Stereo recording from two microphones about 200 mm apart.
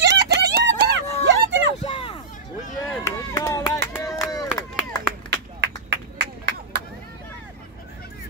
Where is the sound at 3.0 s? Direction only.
15° left (ahead or behind).